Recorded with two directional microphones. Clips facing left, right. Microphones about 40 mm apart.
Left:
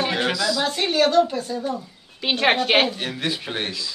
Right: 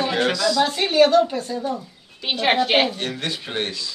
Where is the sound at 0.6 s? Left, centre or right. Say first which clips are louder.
Right 3 dB; centre.